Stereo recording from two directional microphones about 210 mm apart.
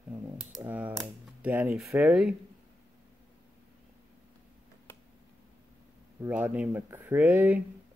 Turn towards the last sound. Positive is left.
turn(degrees=-10)  # may be behind; listen again after turning